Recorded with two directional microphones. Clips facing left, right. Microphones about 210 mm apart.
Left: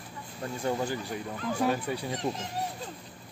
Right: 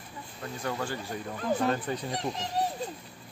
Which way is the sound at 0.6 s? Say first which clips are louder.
Left 3 dB; 20° left (ahead or behind).